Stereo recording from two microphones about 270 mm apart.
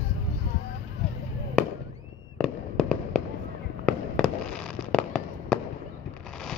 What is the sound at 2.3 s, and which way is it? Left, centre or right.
Fireworks, centre.